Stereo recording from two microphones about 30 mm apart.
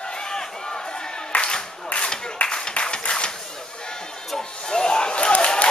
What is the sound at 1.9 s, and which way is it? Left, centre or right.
Clapping, left.